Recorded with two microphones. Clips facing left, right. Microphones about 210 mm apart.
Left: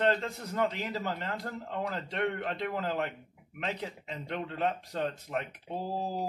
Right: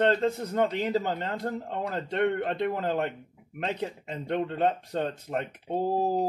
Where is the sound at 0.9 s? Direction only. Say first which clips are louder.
Right 6 dB; 30° right (ahead or behind).